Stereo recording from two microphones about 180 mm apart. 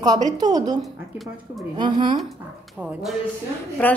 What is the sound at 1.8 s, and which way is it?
Speech, 25° right (ahead or behind).